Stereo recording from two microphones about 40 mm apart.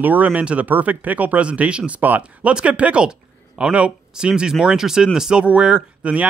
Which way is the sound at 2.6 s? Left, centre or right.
Right.